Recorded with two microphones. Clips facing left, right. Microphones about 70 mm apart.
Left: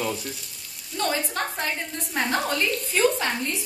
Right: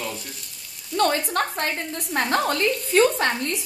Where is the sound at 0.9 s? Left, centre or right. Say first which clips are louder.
Right 5 dB; right.